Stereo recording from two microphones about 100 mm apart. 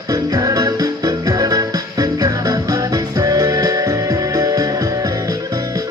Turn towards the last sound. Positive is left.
turn(degrees=-35)  # may be behind; listen again after turning